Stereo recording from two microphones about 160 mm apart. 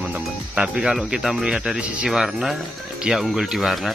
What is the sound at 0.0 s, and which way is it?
Speech, 5° right (ahead or behind).